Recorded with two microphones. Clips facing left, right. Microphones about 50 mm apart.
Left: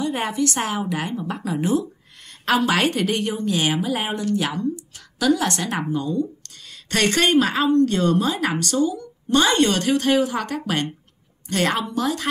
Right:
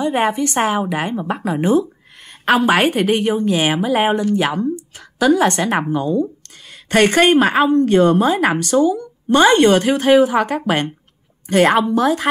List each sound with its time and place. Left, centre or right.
0.0 s speech: right